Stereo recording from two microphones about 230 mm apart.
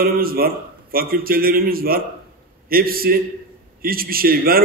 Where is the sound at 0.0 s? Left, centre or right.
Right.